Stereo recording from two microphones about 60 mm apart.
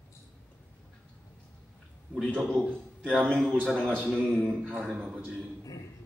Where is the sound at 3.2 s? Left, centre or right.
Centre.